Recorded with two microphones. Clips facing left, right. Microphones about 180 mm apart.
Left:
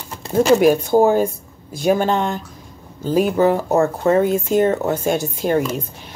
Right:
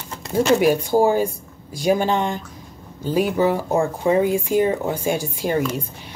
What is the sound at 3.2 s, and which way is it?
Speech, 50° left (ahead or behind).